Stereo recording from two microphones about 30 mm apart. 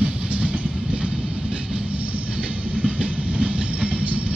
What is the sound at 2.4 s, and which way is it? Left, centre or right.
Train, right.